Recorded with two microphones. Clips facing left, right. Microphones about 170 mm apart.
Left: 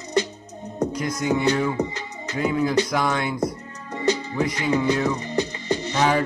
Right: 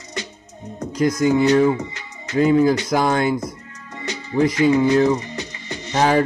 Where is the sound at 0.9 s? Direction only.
35° right (ahead or behind).